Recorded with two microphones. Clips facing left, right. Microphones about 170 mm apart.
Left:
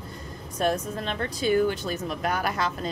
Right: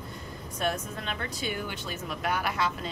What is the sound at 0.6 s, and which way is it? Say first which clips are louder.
Speech: left 5 dB; 35° left (ahead or behind).